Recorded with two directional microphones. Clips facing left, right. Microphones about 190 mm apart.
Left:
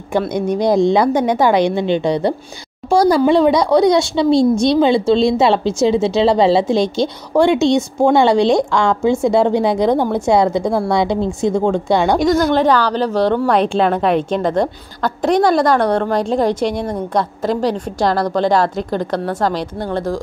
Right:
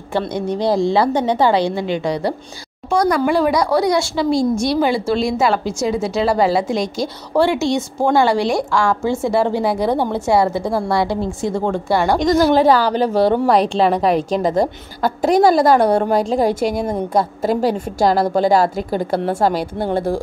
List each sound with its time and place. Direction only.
0.3 s a woman's voice: 15° left (ahead or behind)
9.8 s a woman's voice: 10° right (ahead or behind)
10.1 s a woman's voice: 15° left (ahead or behind)
12.3 s a woman's voice: 5° right (ahead or behind)